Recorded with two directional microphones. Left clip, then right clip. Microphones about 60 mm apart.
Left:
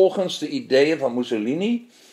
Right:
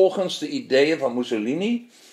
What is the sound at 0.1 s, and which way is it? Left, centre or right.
A man's voice, centre.